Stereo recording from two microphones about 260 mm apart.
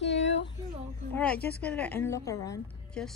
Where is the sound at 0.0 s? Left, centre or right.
Left.